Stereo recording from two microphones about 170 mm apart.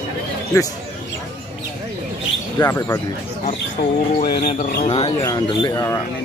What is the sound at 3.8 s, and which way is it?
Speech, 65° left (ahead or behind).